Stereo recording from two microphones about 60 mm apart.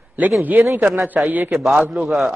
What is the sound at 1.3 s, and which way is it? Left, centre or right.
Speech, right.